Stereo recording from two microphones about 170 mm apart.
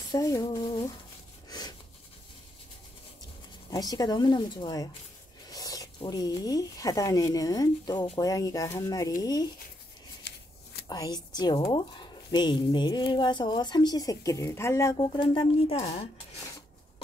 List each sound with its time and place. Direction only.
0.1 s a woman's voice: 20° left (ahead or behind)
1.5 s a sound: 25° left (ahead or behind)
3.7 s a woman's voice: 20° left (ahead or behind)
10.9 s a woman's voice: 25° left (ahead or behind)
15.0 s speech: 30° left (ahead or behind)